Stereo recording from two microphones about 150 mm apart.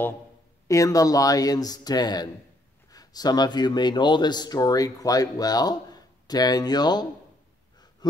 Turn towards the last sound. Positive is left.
turn(degrees=30)  # may be behind; listen again after turning